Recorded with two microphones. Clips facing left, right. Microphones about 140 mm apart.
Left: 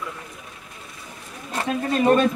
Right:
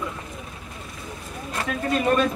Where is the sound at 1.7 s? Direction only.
30° left (ahead or behind).